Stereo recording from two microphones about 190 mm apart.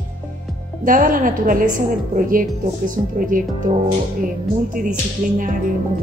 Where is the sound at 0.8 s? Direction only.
45° right (ahead or behind).